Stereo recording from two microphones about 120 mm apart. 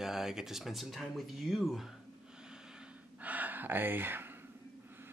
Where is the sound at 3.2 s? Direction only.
15° right (ahead or behind).